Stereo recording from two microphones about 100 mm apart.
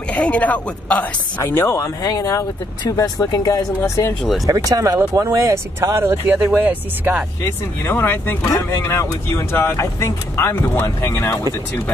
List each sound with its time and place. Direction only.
0.1 s speech: 15° left (ahead or behind)
1.4 s speech: 25° left (ahead or behind)
1.8 s speech: 40° left (ahead or behind)
4.5 s speech: 35° right (ahead or behind); by 7.2 s 15° right (ahead or behind)
7.9 s speech: 20° left (ahead or behind)
8.5 s speech: 35° left (ahead or behind)